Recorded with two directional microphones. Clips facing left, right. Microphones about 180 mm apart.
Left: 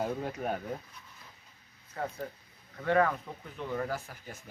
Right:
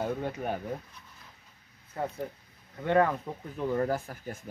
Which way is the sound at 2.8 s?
25° right (ahead or behind).